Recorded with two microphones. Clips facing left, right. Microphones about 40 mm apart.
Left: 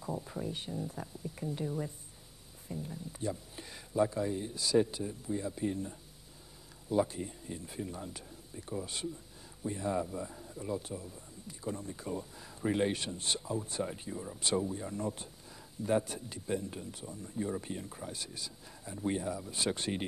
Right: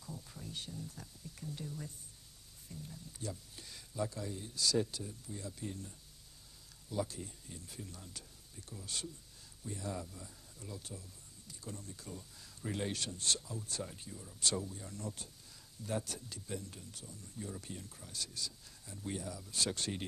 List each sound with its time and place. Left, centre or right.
0.0 s speech: left